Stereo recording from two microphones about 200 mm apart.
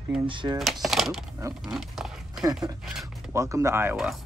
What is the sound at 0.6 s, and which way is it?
Speech, centre (ahead or behind).